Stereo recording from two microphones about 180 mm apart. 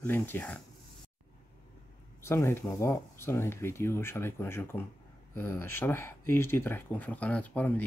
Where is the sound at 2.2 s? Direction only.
15° left (ahead or behind).